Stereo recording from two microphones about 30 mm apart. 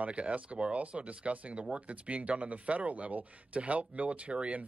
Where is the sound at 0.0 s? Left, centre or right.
Right.